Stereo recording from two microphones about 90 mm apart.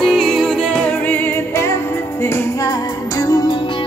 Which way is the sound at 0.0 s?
Centre (ahead or behind).